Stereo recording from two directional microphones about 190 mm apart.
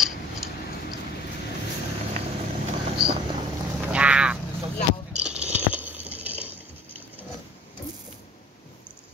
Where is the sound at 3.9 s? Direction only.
5° right (ahead or behind).